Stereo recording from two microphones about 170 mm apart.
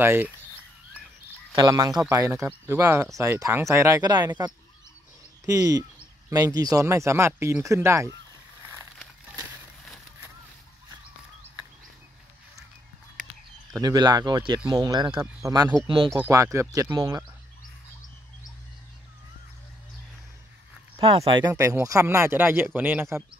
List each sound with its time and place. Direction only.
0.0 s speech: 10° right (ahead or behind)
1.5 s speech: 20° right (ahead or behind)
13.7 s speech: 20° right (ahead or behind)
20.9 s a sound: 30° right (ahead or behind)
21.2 s speech: 25° right (ahead or behind)